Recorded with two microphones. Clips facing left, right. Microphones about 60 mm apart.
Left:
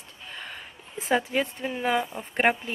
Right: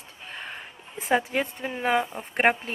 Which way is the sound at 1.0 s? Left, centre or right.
Centre.